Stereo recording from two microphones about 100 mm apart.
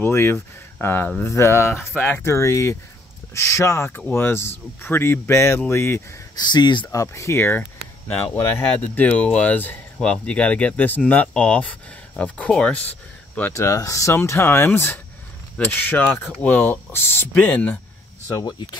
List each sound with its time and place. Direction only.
0.0 s speech: 25° left (ahead or behind)
6.3 s speech: 45° left (ahead or behind)
6.9 s speech: 30° left (ahead or behind); by 12.9 s 15° left (ahead or behind)
13.5 s speech: 30° left (ahead or behind); by 17.7 s 15° left (ahead or behind)
18.3 s speech: 45° left (ahead or behind)